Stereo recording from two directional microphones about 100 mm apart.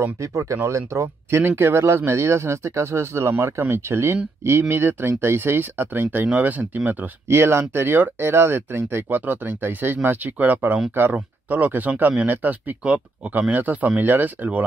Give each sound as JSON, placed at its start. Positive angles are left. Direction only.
{"t": 0.0, "sound": "speech", "side_deg": -30}